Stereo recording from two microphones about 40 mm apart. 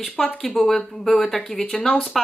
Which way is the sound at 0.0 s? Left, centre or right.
Centre.